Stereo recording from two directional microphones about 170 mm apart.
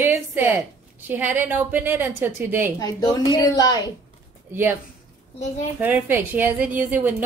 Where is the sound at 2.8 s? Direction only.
20° left (ahead or behind).